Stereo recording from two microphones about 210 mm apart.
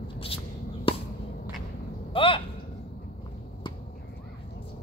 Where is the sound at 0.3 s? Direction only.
25° left (ahead or behind).